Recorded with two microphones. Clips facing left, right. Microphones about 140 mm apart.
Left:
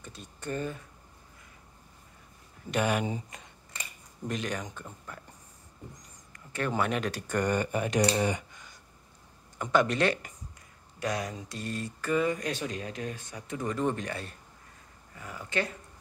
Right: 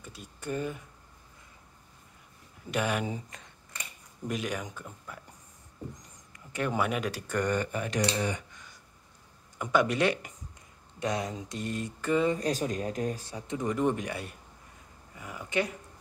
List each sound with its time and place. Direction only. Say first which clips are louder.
0.0 s speech: even; 10° right (ahead or behind)
2.7 s speech: left 2 dB; centre (ahead or behind)
4.3 s speech: even; 5° right (ahead or behind)
6.3 s speech: even; 15° right (ahead or behind); by 8.0 s 15° left (ahead or behind)
9.6 s speech: even; 10° right (ahead or behind)
11.0 s speech: right 1 dB; 20° right (ahead or behind)
13.5 s speech: right 2 dB; 15° right (ahead or behind)